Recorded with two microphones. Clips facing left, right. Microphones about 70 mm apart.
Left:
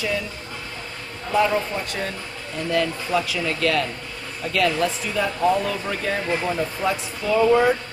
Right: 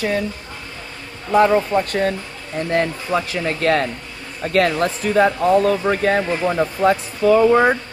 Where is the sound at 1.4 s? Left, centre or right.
Right.